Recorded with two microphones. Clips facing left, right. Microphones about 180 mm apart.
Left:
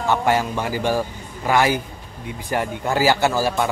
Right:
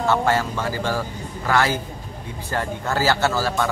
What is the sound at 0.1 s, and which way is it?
Speech, 15° left (ahead or behind).